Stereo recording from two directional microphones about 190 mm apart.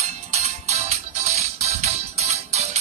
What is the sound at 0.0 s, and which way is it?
Music, 35° right (ahead or behind).